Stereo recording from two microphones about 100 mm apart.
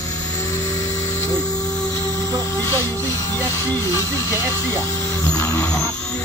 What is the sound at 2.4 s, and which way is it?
Speech, 25° left (ahead or behind).